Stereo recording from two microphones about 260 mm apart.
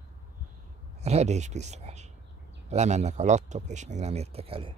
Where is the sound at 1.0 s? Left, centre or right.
Right.